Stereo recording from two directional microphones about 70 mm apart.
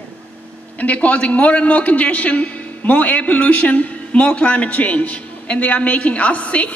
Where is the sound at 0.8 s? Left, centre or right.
Centre.